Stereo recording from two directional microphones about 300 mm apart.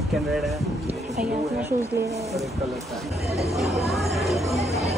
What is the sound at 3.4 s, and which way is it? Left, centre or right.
Speech, centre.